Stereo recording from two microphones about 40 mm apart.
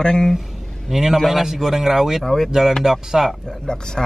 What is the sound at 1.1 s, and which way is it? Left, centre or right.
Speech, centre.